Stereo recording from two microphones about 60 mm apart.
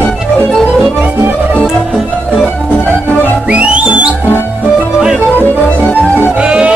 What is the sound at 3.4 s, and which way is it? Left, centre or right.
Music, centre.